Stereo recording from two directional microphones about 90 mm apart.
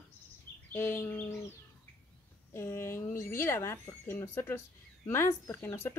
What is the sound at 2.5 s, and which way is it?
Speech, 30° left (ahead or behind).